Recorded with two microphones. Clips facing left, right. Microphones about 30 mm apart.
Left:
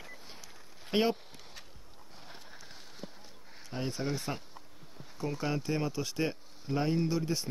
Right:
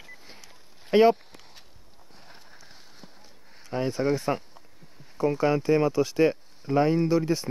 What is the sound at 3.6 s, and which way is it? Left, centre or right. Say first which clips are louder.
Speech: right 9 dB; right.